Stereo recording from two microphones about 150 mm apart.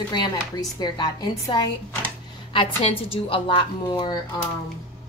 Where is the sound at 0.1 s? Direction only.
30° left (ahead or behind).